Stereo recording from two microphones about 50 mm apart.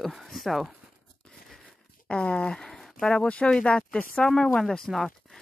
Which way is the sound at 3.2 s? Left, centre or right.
Left.